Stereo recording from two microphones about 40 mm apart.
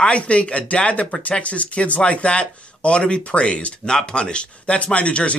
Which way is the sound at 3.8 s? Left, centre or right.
Centre.